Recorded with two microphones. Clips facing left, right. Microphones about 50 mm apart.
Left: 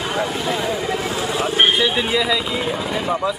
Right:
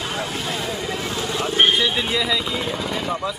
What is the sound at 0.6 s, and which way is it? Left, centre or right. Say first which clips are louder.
Speech: left 4 dB; centre.